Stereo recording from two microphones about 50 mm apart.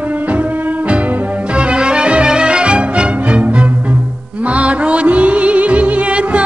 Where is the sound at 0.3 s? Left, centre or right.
Right.